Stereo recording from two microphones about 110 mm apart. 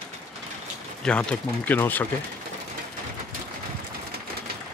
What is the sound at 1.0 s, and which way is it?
Speech, 10° left (ahead or behind).